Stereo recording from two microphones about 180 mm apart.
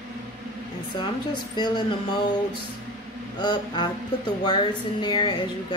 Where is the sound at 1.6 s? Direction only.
25° left (ahead or behind).